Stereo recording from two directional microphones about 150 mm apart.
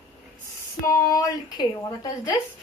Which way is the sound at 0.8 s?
20° left (ahead or behind).